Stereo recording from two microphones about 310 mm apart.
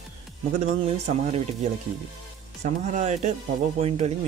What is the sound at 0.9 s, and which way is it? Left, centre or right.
Speech, centre.